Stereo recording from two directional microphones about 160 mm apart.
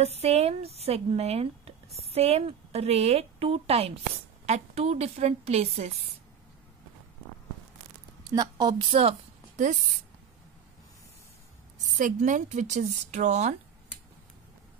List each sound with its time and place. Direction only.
0.2 s a woman's voice: 40° right (ahead or behind)
8.2 s a woman's voice: 25° right (ahead or behind)
12.0 s speech: 55° right (ahead or behind)